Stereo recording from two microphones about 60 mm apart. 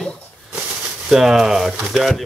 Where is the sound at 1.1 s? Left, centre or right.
Centre.